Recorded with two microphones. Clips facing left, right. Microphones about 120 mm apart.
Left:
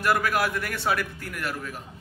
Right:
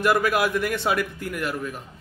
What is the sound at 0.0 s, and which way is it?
A man's voice, 20° right (ahead or behind).